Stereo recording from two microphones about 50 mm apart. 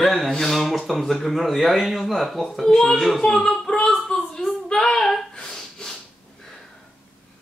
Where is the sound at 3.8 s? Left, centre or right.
Centre.